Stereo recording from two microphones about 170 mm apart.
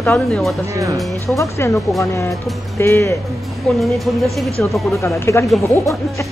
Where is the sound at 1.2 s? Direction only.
15° left (ahead or behind).